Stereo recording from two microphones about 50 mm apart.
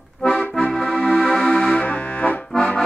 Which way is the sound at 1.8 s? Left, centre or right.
Left.